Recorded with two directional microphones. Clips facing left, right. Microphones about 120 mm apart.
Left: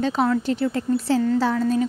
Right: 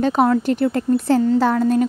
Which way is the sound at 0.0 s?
50° right (ahead or behind).